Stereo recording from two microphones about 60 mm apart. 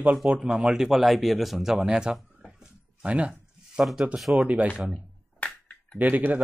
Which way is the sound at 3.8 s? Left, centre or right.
Centre.